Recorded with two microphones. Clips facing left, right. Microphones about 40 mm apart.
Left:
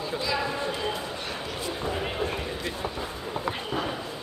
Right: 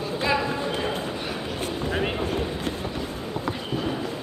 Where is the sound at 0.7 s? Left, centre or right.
Right.